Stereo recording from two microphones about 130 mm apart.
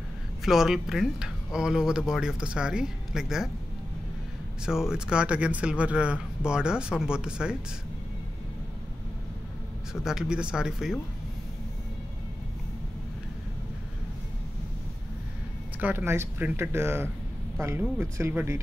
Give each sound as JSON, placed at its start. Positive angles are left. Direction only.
{"t": 0.5, "sound": "speech", "side_deg": -5}
{"t": 4.6, "sound": "speech", "side_deg": -5}
{"t": 10.0, "sound": "speech", "side_deg": -5}
{"t": 15.8, "sound": "speech", "side_deg": -15}